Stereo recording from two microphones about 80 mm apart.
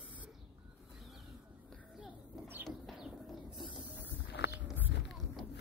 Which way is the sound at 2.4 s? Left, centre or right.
Right.